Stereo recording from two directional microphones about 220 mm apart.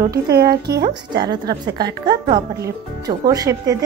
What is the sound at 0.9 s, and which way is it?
A woman's voice, 20° right (ahead or behind).